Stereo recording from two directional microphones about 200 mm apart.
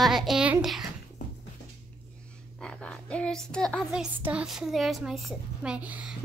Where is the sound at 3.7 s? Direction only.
5° right (ahead or behind).